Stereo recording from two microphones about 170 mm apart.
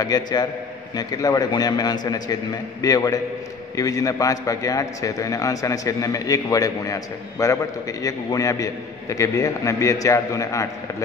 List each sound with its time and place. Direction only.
0.0 s a man's voice: 25° left (ahead or behind)